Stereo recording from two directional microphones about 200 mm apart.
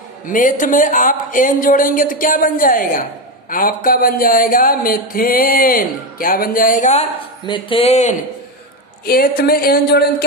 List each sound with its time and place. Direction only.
0.3 s speech: 40° left (ahead or behind)
9.0 s speech: 45° left (ahead or behind)